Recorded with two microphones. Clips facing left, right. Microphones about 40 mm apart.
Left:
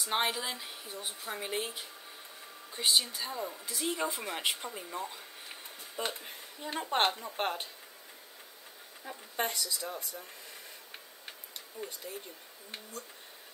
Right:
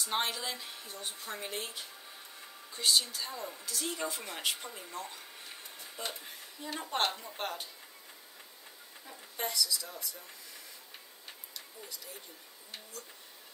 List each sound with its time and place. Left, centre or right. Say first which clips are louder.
0.0 s a woman's voice: left 2 dB; centre
5.9 s speech: left 5 dB; left
9.4 s speech: left 1 dB; left
11.5 s a sound: left 7 dB; left